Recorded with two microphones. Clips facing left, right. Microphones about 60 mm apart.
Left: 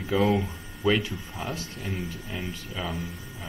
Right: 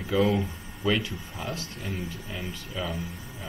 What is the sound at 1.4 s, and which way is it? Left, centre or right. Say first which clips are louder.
Speech: even; left.